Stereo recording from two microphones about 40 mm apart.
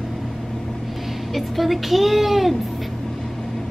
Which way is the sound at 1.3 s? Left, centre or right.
Centre.